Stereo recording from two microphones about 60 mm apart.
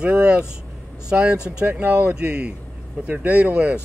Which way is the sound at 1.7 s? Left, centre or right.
Right.